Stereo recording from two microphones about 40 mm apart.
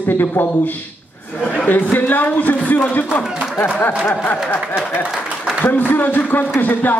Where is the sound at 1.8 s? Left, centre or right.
Left.